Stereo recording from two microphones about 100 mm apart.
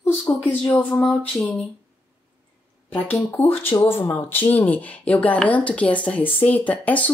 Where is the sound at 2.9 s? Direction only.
20° left (ahead or behind).